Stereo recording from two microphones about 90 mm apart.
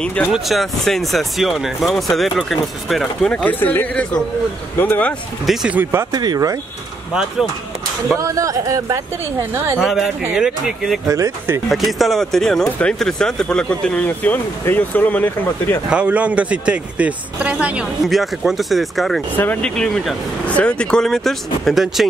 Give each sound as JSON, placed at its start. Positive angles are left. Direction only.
{"t": 0.0, "sound": "speech", "side_deg": 15}
{"t": 0.3, "sound": "speech", "side_deg": 0}
{"t": 3.5, "sound": "speech", "side_deg": 20}
{"t": 5.7, "sound": "speech", "side_deg": -25}
{"t": 6.1, "sound": "speech", "side_deg": -45}
{"t": 8.2, "sound": "a woman's voice", "side_deg": -35}
{"t": 9.8, "sound": "speech", "side_deg": 0}
{"t": 11.1, "sound": "a woman's voice", "side_deg": -35}
{"t": 11.7, "sound": "speech", "side_deg": 0}
{"t": 15.9, "sound": "a man's voice", "side_deg": -15}
{"t": 18.0, "sound": "speech", "side_deg": 0}
{"t": 19.3, "sound": "speech", "side_deg": 20}
{"t": 19.7, "sound": "speech", "side_deg": 10}